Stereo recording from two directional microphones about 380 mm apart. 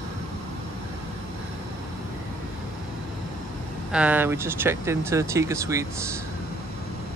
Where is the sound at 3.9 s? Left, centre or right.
Centre.